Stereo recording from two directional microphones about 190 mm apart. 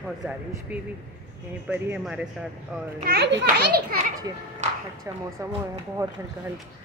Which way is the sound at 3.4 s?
50° right (ahead or behind).